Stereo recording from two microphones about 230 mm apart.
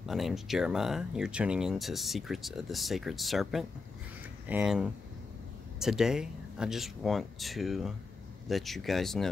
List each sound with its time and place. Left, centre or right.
0.1 s speech: centre